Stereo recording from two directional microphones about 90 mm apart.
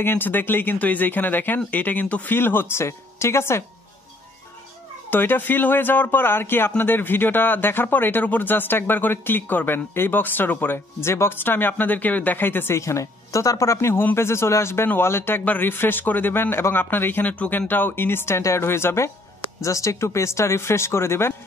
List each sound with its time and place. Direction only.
0.0 s speech: 20° left (ahead or behind)
5.1 s speech: 25° left (ahead or behind)